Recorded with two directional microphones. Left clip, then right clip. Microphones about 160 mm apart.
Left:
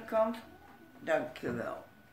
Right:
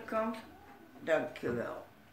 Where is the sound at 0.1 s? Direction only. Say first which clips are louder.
Left 5 dB; 40° left (ahead or behind).